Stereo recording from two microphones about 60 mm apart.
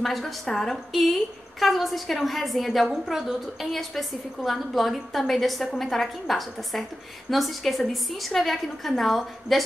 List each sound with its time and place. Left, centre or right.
0.0 s a woman's voice: centre